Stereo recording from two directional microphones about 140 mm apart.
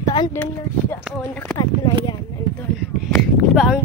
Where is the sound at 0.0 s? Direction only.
30° left (ahead or behind).